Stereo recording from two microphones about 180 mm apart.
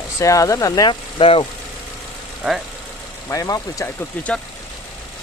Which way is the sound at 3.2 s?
20° left (ahead or behind).